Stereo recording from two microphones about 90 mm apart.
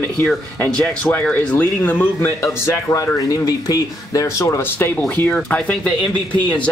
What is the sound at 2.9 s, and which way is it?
Speech, 40° left (ahead or behind).